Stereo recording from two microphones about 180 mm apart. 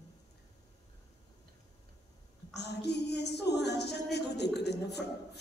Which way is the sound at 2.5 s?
70° left (ahead or behind).